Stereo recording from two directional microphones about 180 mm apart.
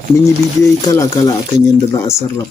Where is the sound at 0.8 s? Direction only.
20° left (ahead or behind).